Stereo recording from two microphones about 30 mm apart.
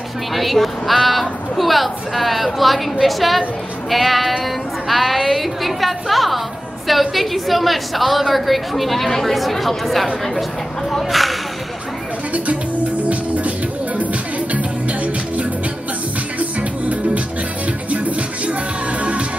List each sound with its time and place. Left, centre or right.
0.3 s a woman's voice: centre
10.9 s a sound: centre
13.0 s music: right
14.5 s music: right